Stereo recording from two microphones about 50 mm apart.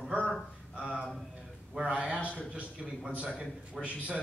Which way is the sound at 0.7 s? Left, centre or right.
Right.